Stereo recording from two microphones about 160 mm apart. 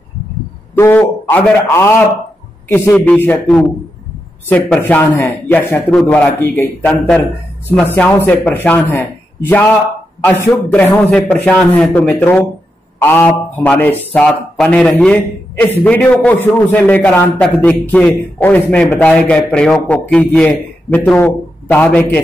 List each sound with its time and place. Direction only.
0.7 s a man's voice: 10° left (ahead or behind)